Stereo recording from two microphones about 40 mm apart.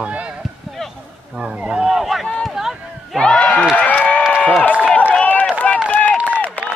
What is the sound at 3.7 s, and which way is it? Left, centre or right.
Run, left.